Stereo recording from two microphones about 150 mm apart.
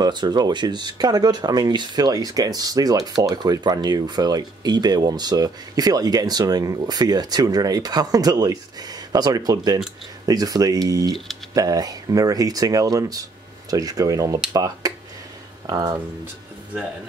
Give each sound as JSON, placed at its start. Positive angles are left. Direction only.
{"t": 0.0, "sound": "speech", "side_deg": -30}